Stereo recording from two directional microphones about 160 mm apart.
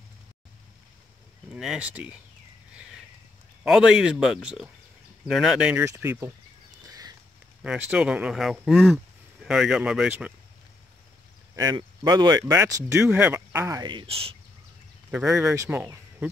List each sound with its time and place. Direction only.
1.5 s speech: 5° right (ahead or behind)
3.6 s speech: 5° right (ahead or behind)
5.9 s speech: 15° right (ahead or behind)
6.9 s a sound: 25° right (ahead or behind)
7.6 s speech: 10° right (ahead or behind)
11.5 s speech: 20° right (ahead or behind)
15.0 s speech: 5° right (ahead or behind)
15.5 s speech: 15° right (ahead or behind)